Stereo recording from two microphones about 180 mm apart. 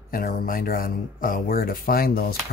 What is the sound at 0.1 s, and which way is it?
Speech, 50° left (ahead or behind).